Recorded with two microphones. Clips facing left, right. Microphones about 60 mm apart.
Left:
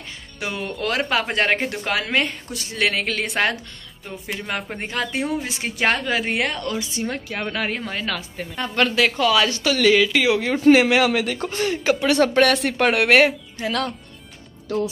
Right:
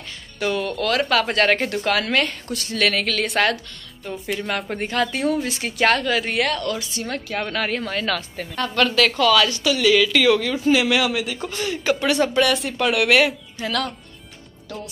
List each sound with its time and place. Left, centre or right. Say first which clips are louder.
0.4 s a woman's voice: right 4 dB; centre
9.6 s speech: left 1 dB; left
10.0 s a woman's voice: right 2 dB; centre
10.7 s speech: left 4 dB; left
11.4 s speech: even; left
12.1 s speech: left 3 dB; left
12.6 s speech: left 3 dB; left
12.9 s speech: left 1 dB; left